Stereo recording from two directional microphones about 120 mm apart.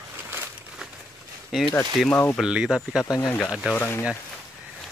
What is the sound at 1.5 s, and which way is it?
Speech, centre (ahead or behind).